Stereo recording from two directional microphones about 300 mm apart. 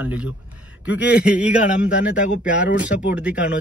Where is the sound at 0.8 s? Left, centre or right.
Left.